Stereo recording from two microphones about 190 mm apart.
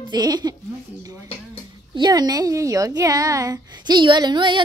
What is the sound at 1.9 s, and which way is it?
A woman's voice, 20° right (ahead or behind).